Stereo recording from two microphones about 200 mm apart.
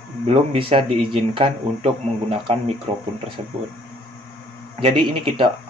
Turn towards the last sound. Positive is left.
turn(degrees=-25)  # may be behind; listen again after turning